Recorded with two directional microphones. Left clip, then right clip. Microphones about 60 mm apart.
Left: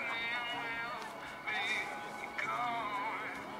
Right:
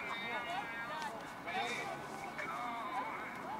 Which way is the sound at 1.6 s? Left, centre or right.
Centre.